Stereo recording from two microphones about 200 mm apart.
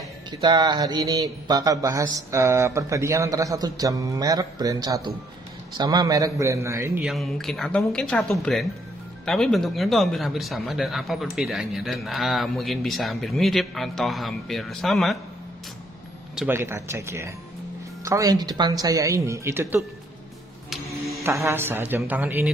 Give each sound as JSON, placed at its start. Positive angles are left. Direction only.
{"t": 0.3, "sound": "speech", "side_deg": -20}
{"t": 7.1, "sound": "speech", "side_deg": 0}
{"t": 16.3, "sound": "speech", "side_deg": -10}
{"t": 21.1, "sound": "speech", "side_deg": -15}